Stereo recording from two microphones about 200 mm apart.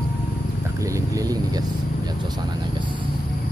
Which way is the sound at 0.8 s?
15° right (ahead or behind).